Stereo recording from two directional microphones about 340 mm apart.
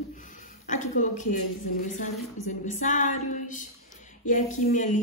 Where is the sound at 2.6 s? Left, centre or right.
Left.